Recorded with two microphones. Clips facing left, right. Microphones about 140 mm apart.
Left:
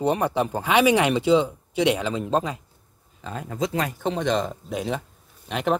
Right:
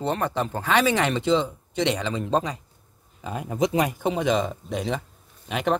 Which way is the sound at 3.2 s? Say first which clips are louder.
Right 3 dB; 10° right (ahead or behind).